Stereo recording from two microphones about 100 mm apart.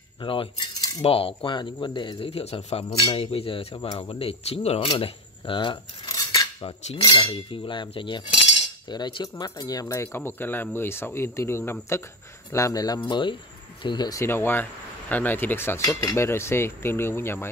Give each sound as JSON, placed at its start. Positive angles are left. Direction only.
{"t": 0.2, "sound": "cutlery", "side_deg": 55}
{"t": 1.0, "sound": "speech", "side_deg": 70}
{"t": 3.9, "sound": "cutlery", "side_deg": 50}
{"t": 4.2, "sound": "speech", "side_deg": 85}
{"t": 7.2, "sound": "cutlery", "side_deg": 50}
{"t": 7.4, "sound": "cutlery", "side_deg": 60}
{"t": 9.4, "sound": "speech", "side_deg": 40}
{"t": 12.5, "sound": "speech", "side_deg": 35}
{"t": 13.1, "sound": "cutlery", "side_deg": 55}
{"t": 13.8, "sound": "cutlery", "side_deg": 45}
{"t": 14.2, "sound": "speech", "side_deg": 20}
{"t": 15.8, "sound": "speech", "side_deg": 40}
{"t": 16.2, "sound": "speech", "side_deg": 25}